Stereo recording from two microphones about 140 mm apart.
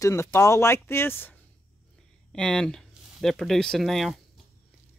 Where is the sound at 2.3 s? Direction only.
5° left (ahead or behind).